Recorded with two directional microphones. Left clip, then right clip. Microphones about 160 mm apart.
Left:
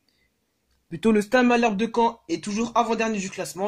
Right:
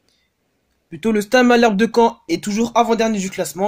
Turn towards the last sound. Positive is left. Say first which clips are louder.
# right 7 dB
turn(degrees=-45)  # may be behind; listen again after turning